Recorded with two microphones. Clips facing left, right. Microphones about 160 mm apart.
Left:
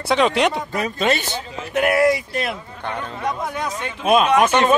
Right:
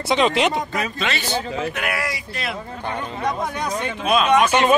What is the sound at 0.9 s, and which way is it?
Speech, 50° left (ahead or behind).